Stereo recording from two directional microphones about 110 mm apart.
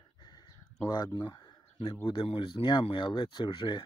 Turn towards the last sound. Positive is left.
turn(degrees=45)  # may be behind; listen again after turning